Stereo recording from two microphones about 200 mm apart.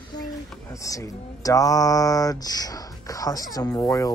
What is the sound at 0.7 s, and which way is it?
Speech, 15° left (ahead or behind).